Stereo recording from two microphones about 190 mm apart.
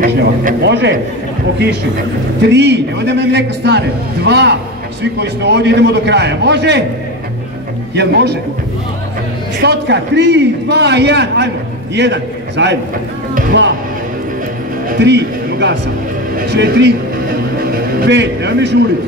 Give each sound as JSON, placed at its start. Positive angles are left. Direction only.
{"t": 0.0, "sound": "a sound", "side_deg": -45}
{"t": 0.7, "sound": "a man's voice", "side_deg": -65}
{"t": 2.5, "sound": "a man's voice", "side_deg": -65}
{"t": 7.9, "sound": "a man's voice", "side_deg": -65}
{"t": 9.6, "sound": "a man's voice", "side_deg": -65}
{"t": 15.0, "sound": "a man's voice", "side_deg": -65}
{"t": 17.6, "sound": "a sound", "side_deg": -65}